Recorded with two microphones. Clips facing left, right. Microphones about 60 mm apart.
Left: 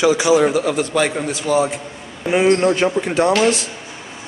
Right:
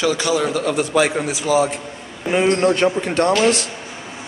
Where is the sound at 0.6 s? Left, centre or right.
Centre.